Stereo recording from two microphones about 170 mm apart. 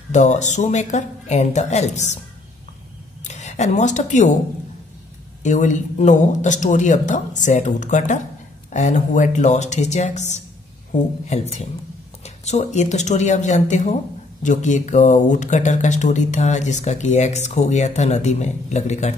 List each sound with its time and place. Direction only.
0.1 s speech: 45° left (ahead or behind)
3.3 s a woman's voice: 40° left (ahead or behind)
5.4 s speech: 45° left (ahead or behind)